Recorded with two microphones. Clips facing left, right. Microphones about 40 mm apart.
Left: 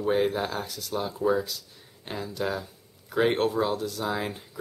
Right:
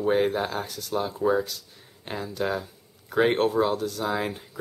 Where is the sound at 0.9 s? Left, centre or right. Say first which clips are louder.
Right 2 dB; centre.